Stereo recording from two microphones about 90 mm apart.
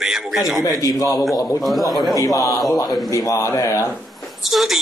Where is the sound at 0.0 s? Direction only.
5° right (ahead or behind).